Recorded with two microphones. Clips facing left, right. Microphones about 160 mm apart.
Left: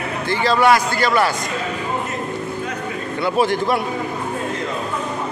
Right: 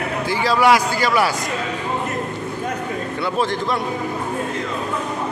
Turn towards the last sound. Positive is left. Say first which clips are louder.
# left 3 dB
turn(degrees=10)  # may be behind; listen again after turning